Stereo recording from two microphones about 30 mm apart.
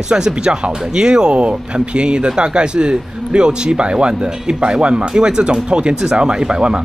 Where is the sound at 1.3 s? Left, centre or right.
Right.